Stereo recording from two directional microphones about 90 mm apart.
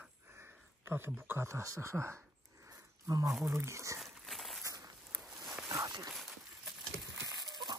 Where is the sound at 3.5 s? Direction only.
30° right (ahead or behind).